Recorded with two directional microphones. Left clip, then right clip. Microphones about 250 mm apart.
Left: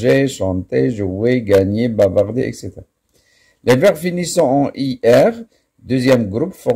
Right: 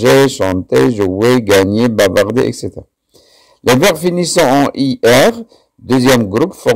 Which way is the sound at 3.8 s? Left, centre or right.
Right.